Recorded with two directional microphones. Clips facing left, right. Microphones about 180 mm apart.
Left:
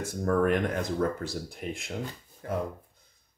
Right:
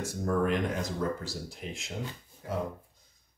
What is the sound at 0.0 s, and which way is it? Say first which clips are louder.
Speech: left 3 dB; 55° left (ahead or behind).